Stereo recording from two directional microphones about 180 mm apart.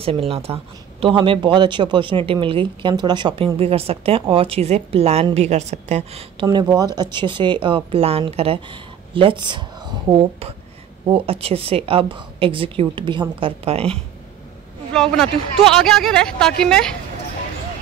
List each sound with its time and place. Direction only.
0.0 s speech: 30° right (ahead or behind)
6.4 s speech: 20° right (ahead or behind)
14.9 s speech: 5° left (ahead or behind)